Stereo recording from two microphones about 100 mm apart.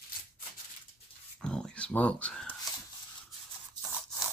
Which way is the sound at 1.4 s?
10° left (ahead or behind).